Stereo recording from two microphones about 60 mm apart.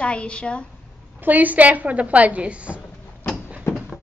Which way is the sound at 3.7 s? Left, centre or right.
Left.